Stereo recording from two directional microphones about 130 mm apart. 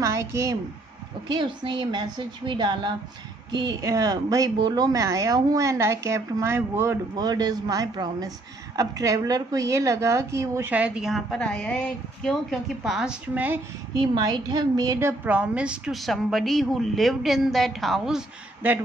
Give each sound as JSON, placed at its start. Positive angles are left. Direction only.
{"t": 0.0, "sound": "a woman's voice", "side_deg": -20}
{"t": 1.3, "sound": "a woman's voice", "side_deg": -35}
{"t": 10.7, "sound": "a woman's voice", "side_deg": -10}
{"t": 13.9, "sound": "a woman's voice", "side_deg": -30}